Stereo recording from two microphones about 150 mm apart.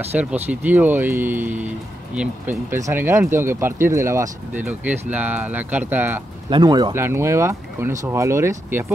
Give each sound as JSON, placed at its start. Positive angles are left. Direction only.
{"t": 0.1, "sound": "speech", "side_deg": -10}
{"t": 6.5, "sound": "speech", "side_deg": -25}
{"t": 7.0, "sound": "speech", "side_deg": -15}